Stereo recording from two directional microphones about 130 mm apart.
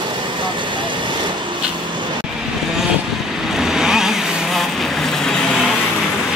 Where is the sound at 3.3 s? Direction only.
5° right (ahead or behind).